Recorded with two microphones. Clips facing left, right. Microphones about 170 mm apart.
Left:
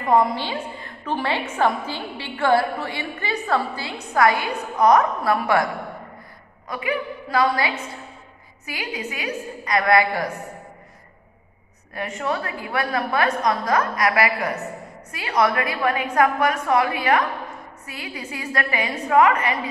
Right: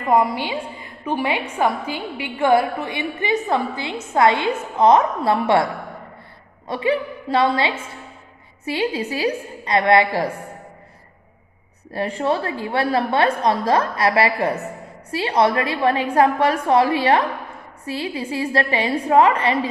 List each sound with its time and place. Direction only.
0.1 s a woman's voice: 10° right (ahead or behind)
6.7 s a woman's voice: 30° right (ahead or behind)
11.9 s a woman's voice: 30° right (ahead or behind)